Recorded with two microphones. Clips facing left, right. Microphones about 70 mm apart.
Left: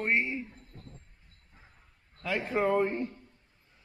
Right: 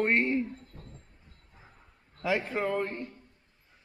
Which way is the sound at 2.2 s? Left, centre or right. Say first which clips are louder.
Right 4 dB; centre.